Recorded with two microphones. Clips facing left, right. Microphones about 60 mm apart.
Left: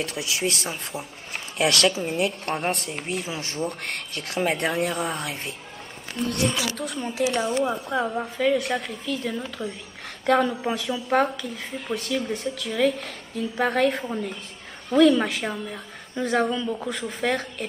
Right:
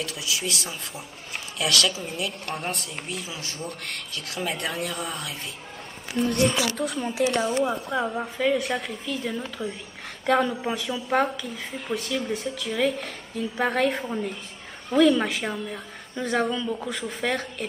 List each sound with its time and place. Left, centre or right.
0.0 s speech: left
6.1 s a woman's voice: centre